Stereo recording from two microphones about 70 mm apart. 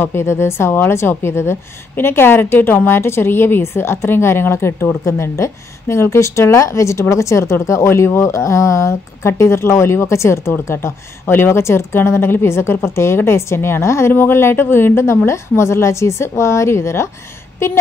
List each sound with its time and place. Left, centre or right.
0.0 s a woman's voice: left